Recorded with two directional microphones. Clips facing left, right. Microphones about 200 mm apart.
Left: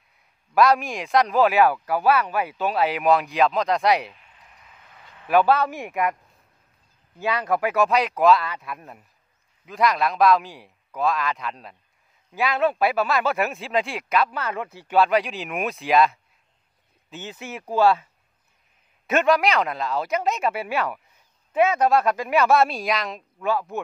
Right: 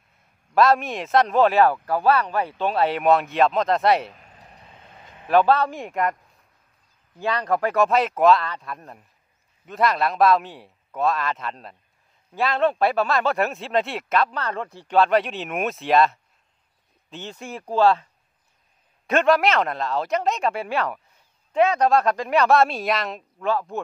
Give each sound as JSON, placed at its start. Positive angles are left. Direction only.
{"t": 0.6, "sound": "speech", "side_deg": 0}
{"t": 4.1, "sound": "a sound", "side_deg": -40}
{"t": 5.3, "sound": "speech", "side_deg": 5}
{"t": 7.2, "sound": "speech", "side_deg": 5}
{"t": 19.0, "sound": "speech", "side_deg": 0}